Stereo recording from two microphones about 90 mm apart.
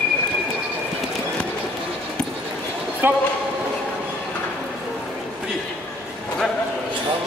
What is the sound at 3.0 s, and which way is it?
Speech, 25° right (ahead or behind).